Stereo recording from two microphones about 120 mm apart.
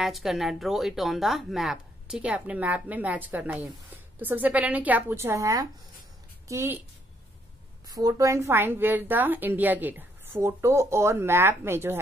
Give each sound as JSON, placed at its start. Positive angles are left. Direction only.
{"t": 0.0, "sound": "a woman's voice", "side_deg": 0}
{"t": 7.9, "sound": "a woman's voice", "side_deg": -30}